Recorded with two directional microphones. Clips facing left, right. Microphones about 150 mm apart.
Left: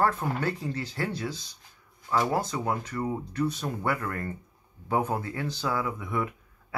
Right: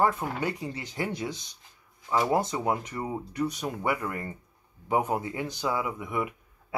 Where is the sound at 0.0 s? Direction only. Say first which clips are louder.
Even; 15° right (ahead or behind).